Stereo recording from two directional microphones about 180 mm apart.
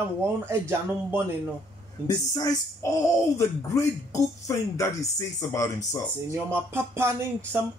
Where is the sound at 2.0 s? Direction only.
20° left (ahead or behind).